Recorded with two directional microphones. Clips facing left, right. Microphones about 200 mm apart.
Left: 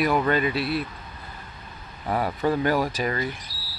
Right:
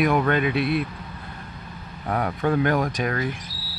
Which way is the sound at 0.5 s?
55° right (ahead or behind).